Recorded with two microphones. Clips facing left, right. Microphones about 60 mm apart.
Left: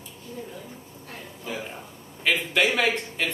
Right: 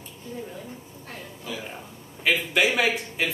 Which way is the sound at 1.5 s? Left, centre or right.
Left.